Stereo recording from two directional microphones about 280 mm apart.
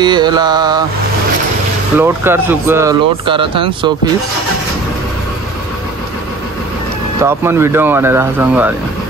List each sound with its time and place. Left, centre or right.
0.0 s speech: centre
2.0 s speech: centre
7.2 s speech: centre